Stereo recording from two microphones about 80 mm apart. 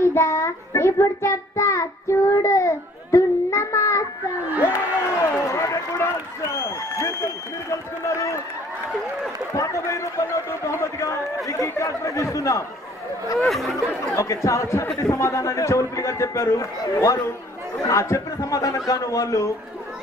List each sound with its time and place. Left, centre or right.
0.0 s child singing: left
4.6 s run: left
6.6 s applause: left
7.7 s a man's voice: left
9.5 s a man's voice: left
13.5 s speech: centre
14.1 s a man's voice: left